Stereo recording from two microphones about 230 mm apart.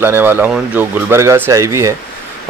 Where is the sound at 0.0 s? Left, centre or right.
Centre.